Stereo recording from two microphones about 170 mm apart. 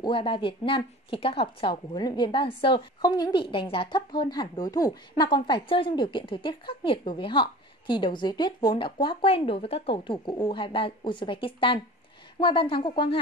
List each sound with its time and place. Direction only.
0.0 s a woman's voice: 30° left (ahead or behind)